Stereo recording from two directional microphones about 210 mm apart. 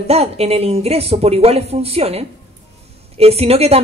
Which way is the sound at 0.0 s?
30° right (ahead or behind).